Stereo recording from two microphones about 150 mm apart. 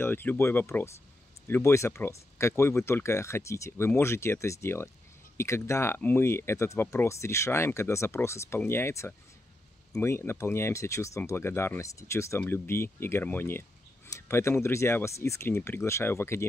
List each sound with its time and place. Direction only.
0.0 s speech: 15° left (ahead or behind)